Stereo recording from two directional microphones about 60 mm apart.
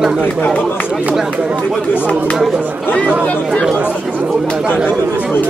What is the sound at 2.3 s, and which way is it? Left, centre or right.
Speech, centre.